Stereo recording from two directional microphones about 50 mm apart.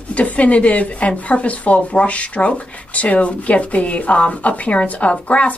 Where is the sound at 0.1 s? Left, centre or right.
Left.